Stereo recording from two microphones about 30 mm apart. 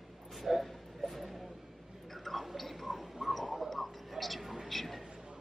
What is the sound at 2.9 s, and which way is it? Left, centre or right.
Tick-tock, centre.